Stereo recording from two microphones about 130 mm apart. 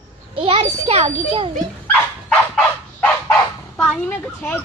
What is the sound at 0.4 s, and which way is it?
A child's voice, 45° right (ahead or behind).